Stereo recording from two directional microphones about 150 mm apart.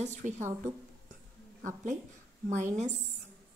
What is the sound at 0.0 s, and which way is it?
Speech, 55° right (ahead or behind).